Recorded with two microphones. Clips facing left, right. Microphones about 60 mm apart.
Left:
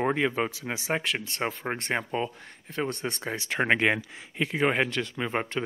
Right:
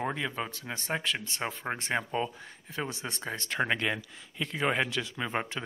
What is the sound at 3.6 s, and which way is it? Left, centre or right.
Speech, left.